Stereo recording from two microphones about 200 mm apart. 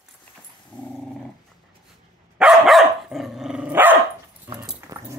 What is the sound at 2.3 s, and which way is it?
Dog, centre (ahead or behind).